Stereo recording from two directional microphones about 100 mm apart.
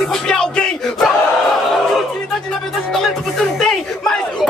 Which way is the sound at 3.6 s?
5° left (ahead or behind).